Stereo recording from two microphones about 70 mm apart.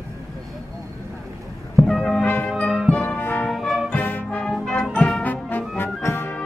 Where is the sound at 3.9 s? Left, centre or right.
Left.